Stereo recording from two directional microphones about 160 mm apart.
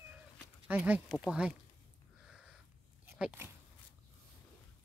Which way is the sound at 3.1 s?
10° right (ahead or behind).